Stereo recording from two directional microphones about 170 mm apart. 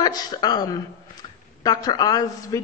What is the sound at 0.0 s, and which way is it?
A woman's voice, 25° left (ahead or behind).